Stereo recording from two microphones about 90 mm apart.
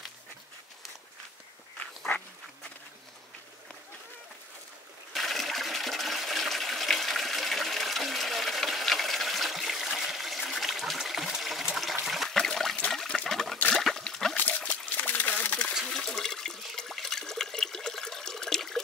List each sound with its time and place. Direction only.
1.8 s dog: 15° left (ahead or behind)
5.1 s toilet flush: centre (ahead or behind)
12.9 s water: 5° left (ahead or behind)
13.7 s dog: 5° left (ahead or behind)
14.3 s water: 15° left (ahead or behind)
15.7 s toilet flush: centre (ahead or behind)